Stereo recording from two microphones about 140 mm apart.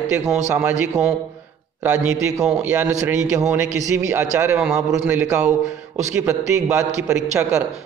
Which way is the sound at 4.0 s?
20° right (ahead or behind).